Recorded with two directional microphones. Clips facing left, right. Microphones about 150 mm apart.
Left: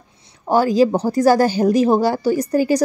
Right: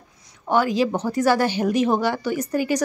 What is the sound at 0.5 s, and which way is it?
Speech, 35° left (ahead or behind).